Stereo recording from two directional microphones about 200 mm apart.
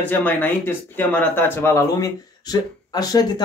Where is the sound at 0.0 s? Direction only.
10° left (ahead or behind).